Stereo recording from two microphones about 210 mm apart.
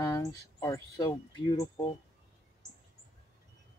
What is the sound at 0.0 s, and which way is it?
Speech, 15° left (ahead or behind).